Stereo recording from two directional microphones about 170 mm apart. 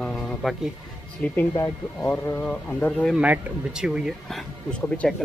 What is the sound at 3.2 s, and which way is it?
Speech, 5° right (ahead or behind).